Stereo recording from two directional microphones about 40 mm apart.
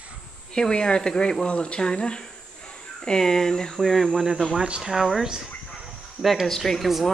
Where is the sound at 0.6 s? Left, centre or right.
Left.